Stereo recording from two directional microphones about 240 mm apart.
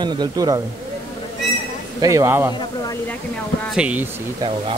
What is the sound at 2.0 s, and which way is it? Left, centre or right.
Speech, centre.